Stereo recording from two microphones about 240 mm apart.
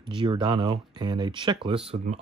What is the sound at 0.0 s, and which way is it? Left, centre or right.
Speech, centre.